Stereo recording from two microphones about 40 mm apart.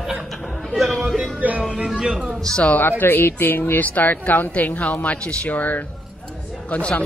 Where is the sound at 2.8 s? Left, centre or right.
Left.